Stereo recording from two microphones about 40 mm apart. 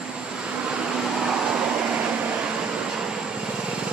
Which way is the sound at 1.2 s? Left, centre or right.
Right.